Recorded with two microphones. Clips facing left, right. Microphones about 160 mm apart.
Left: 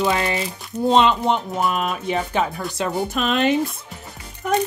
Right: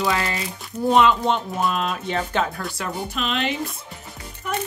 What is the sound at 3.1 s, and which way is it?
Speech, 45° left (ahead or behind).